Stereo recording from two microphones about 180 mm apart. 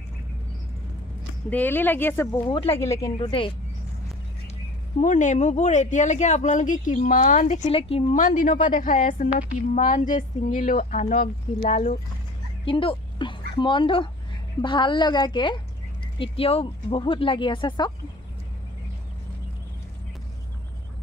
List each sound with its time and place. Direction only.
1.5 s speech: 10° left (ahead or behind)
2.4 s speech: 30° left (ahead or behind)
2.8 s speech: 15° left (ahead or behind)
3.2 s speech: 30° left (ahead or behind)
5.0 s speech: 45° left (ahead or behind)
8.2 s speech: 45° left (ahead or behind)
12.6 s a woman's voice: 30° left (ahead or behind)